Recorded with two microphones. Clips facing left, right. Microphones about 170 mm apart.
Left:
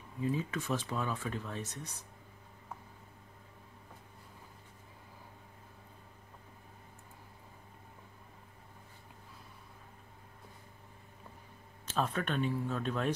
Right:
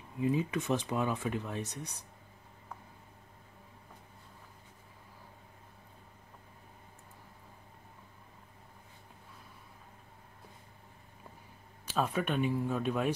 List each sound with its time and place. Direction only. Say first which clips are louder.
0.2 s speech: right 4 dB; 15° right (ahead or behind)
11.8 s speech: right 2 dB; 10° right (ahead or behind)